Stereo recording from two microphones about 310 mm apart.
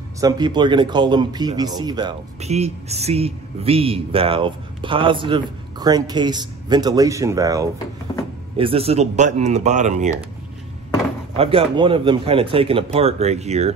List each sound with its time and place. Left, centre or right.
0.2 s speech: centre
11.3 s speech: centre